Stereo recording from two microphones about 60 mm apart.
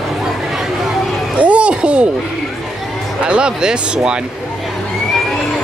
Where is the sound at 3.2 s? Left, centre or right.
Centre.